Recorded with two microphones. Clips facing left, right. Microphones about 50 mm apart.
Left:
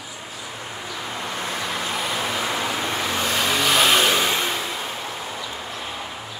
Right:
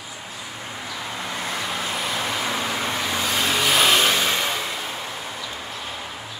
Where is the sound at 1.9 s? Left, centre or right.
Centre.